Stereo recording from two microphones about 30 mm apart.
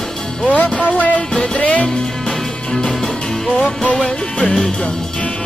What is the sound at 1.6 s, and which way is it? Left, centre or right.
Music, left.